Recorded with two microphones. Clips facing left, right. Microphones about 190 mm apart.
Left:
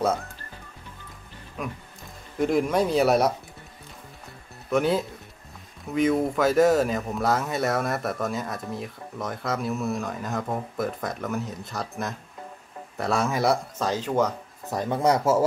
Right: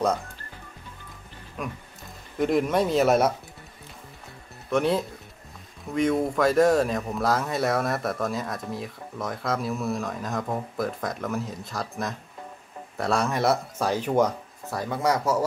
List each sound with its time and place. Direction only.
1.6 s speech: centre (ahead or behind)
4.6 s speech: centre (ahead or behind)
13.7 s speech: 15° right (ahead or behind)
14.7 s speech: 20° left (ahead or behind)